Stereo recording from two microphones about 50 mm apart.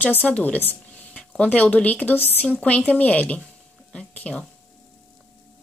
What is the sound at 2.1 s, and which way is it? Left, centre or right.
Speech, left.